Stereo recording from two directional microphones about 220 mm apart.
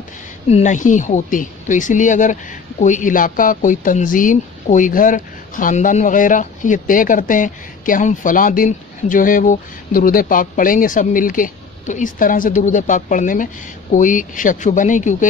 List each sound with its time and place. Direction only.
0.5 s a woman's voice: 30° left (ahead or behind)